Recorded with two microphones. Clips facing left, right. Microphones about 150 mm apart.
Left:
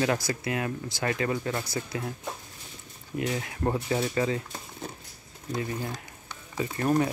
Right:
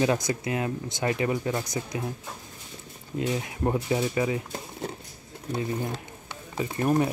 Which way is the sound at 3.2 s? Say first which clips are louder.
Right 2 dB; 20° right (ahead or behind).